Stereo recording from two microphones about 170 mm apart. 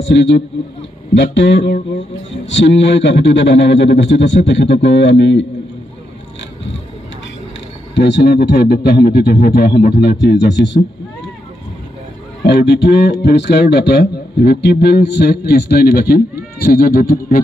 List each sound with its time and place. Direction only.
0.0 s a man's voice: 90° left
7.9 s a man's voice: 90° left
12.4 s a man's voice: 80° left; by 17.4 s 60° left (ahead or behind)